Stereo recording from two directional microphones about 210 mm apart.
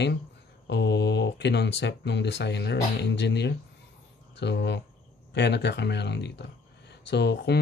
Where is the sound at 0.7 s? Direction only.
55° left (ahead or behind).